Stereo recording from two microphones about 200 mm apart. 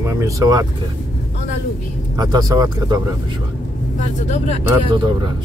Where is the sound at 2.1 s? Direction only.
20° right (ahead or behind).